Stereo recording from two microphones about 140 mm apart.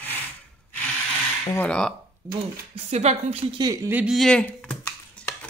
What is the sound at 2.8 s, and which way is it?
Speech, 50° right (ahead or behind).